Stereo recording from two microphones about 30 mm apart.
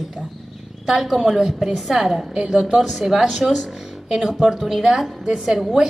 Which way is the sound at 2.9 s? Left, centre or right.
Centre.